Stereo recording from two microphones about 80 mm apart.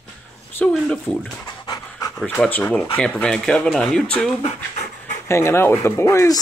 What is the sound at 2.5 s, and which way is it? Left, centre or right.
Speech, left.